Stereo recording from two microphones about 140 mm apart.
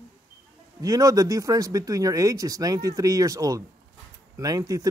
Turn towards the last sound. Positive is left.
turn(degrees=-25)  # may be behind; listen again after turning